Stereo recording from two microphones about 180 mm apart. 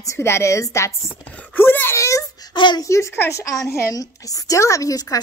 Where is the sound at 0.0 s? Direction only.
15° left (ahead or behind).